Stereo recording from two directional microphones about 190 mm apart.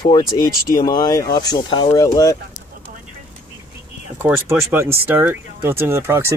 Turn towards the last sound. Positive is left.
turn(degrees=-15)  # may be behind; listen again after turning